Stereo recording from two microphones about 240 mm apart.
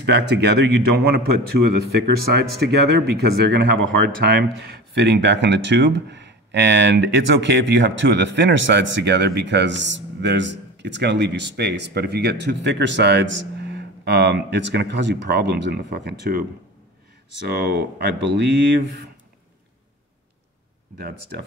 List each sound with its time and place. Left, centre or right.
0.0 s a man's voice: right
2.6 s a man's voice: right
17.5 s a man's voice: right